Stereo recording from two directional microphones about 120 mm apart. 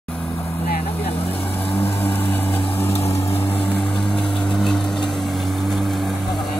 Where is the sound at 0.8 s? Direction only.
55° left (ahead or behind).